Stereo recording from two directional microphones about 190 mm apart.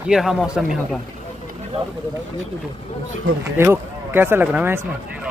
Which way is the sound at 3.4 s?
10° right (ahead or behind).